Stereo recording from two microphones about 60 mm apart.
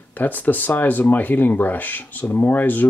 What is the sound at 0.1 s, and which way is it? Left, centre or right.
Speech, left.